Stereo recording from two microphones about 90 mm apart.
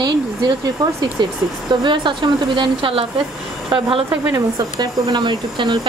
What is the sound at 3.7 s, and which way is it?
Speech, 65° right (ahead or behind).